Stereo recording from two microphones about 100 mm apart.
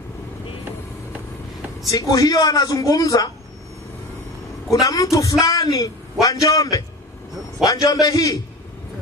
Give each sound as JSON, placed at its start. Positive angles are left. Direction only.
{"t": 1.9, "sound": "a man's voice", "side_deg": 35}
{"t": 4.7, "sound": "a man's voice", "side_deg": 35}